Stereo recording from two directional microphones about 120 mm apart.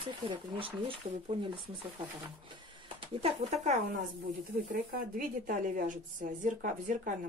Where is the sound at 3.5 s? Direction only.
70° right (ahead or behind).